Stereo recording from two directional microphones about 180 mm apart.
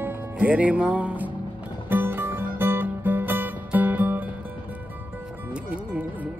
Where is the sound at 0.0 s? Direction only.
10° right (ahead or behind).